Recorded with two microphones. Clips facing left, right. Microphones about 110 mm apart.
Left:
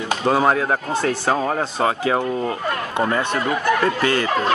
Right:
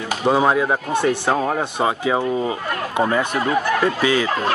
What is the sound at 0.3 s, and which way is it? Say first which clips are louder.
Speech: right 1 dB; 5° right (ahead or behind).